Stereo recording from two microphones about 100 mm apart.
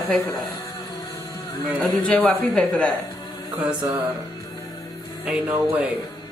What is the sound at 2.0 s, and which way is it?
Speech, 10° left (ahead or behind).